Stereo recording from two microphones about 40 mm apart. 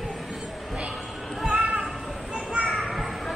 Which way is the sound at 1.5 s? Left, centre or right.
Right.